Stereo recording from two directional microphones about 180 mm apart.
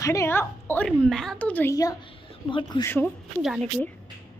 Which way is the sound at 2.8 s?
10° left (ahead or behind).